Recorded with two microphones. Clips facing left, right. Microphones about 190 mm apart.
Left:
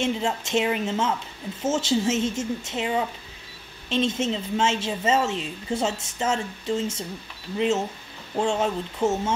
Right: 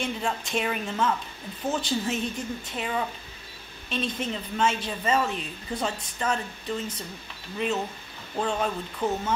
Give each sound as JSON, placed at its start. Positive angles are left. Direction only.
{"t": 0.0, "sound": "a woman's voice", "side_deg": 25}
{"t": 2.0, "sound": "a woman's voice", "side_deg": 85}
{"t": 2.7, "sound": "a woman's voice", "side_deg": 20}